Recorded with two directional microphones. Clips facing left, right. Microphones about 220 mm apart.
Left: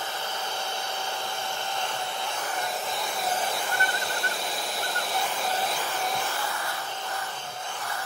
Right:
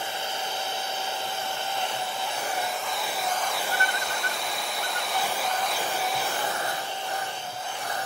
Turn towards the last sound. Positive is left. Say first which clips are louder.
# right 3 dB
turn(degrees=-20)  # may be behind; listen again after turning